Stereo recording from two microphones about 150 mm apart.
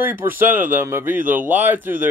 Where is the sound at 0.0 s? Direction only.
15° right (ahead or behind).